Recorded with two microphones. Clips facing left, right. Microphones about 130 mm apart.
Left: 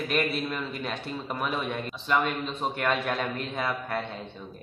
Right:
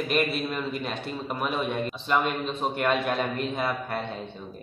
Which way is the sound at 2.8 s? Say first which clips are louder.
Right 3 dB; 15° right (ahead or behind).